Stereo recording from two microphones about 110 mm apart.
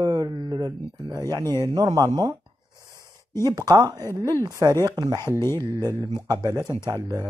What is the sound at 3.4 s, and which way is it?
A man's voice, 30° right (ahead or behind).